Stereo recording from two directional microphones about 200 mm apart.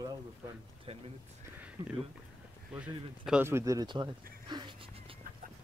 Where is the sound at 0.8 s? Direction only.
30° right (ahead or behind).